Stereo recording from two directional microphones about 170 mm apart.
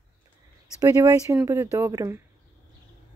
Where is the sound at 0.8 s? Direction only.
20° right (ahead or behind).